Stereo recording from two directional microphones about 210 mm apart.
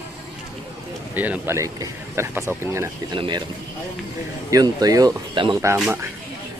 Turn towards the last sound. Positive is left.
turn(degrees=-15)  # may be behind; listen again after turning